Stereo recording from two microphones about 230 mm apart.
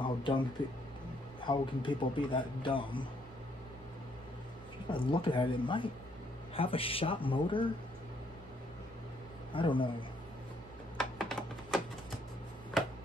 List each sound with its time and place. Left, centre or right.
0.0 s a sound: left
1.4 s a man's voice: left
4.8 s a man's voice: left
9.5 s a man's voice: left
11.0 s computer keyboard: centre